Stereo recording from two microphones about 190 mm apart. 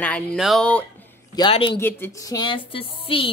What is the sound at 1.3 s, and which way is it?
Speech, 25° left (ahead or behind).